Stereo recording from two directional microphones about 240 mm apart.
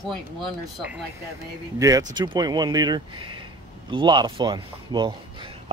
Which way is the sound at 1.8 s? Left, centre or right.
Centre.